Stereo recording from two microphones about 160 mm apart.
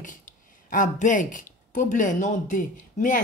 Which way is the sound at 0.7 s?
55° left (ahead or behind).